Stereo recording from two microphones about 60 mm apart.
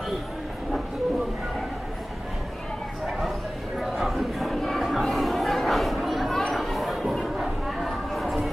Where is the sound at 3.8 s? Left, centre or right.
Centre.